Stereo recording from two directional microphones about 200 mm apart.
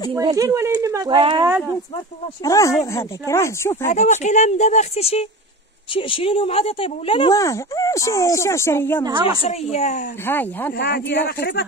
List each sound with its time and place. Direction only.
0.1 s speech: 15° right (ahead or behind)
2.4 s speech: 15° left (ahead or behind)
3.8 s speech: 35° left (ahead or behind); by 9.0 s 10° left (ahead or behind)
9.4 s speech: 35° left (ahead or behind)
10.2 s speech: 10° left (ahead or behind)
10.8 s speech: 55° left (ahead or behind)